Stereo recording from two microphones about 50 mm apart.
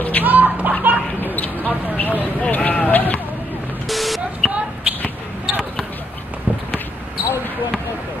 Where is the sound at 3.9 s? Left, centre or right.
Centre.